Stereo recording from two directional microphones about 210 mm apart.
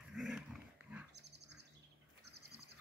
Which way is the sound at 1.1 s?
55° right (ahead or behind).